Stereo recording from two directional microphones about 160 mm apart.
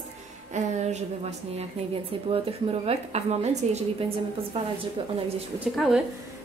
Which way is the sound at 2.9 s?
40° right (ahead or behind).